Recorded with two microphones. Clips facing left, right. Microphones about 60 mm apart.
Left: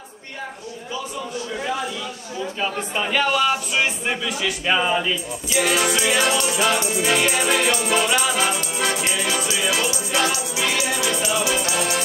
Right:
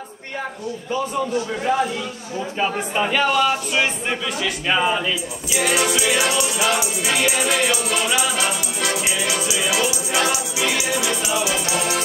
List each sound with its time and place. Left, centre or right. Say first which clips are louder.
1.7 s speech: right 8 dB; right
2.9 s music: right 1 dB; centre
3.3 s music: right 1 dB; centre
11.7 s music: right 1 dB; centre